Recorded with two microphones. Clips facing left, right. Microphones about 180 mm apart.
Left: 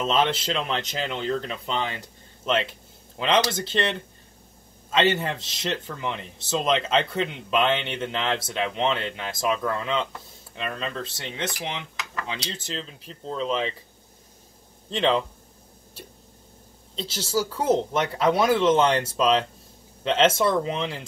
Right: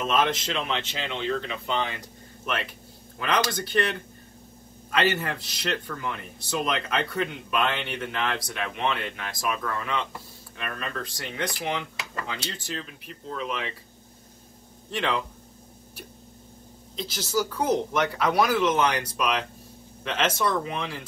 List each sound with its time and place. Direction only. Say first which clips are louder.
0.0 s speech: left 1 dB; 30° left (ahead or behind)
2.4 s speech: left 6 dB; 25° left (ahead or behind)
14.9 s speech: left 5 dB; 20° left (ahead or behind)
16.9 s speech: left 1 dB; 30° left (ahead or behind)